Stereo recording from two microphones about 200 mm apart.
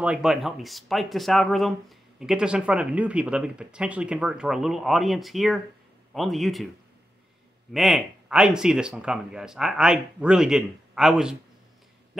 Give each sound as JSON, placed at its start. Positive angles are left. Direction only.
{"t": 0.0, "sound": "speech", "side_deg": -5}
{"t": 7.7, "sound": "speech", "side_deg": 0}